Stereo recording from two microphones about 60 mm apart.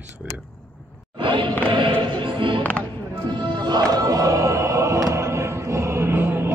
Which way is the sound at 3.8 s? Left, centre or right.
Right.